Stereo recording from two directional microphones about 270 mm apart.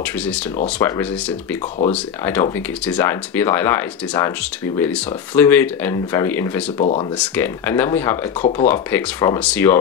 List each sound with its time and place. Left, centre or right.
0.0 s speech: centre
2.2 s speech: centre
6.8 s speech: left
7.2 s speech: centre
8.4 s speech: left
8.6 s speech: centre